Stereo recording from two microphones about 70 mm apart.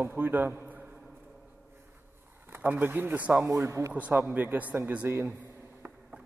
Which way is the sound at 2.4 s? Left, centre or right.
Right.